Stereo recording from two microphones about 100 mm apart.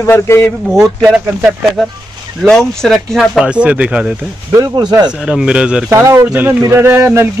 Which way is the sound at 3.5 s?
10° right (ahead or behind).